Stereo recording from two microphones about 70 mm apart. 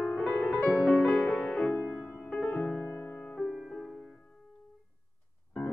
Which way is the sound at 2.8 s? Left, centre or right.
Left.